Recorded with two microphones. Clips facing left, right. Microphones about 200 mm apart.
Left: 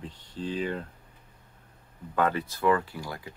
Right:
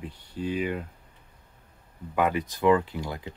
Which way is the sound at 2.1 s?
15° right (ahead or behind).